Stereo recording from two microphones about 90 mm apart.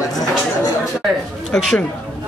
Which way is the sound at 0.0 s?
45° left (ahead or behind).